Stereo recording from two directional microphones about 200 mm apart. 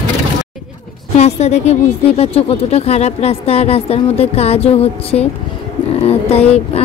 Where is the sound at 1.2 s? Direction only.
35° left (ahead or behind).